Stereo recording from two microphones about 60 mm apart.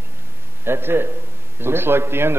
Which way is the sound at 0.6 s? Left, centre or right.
Right.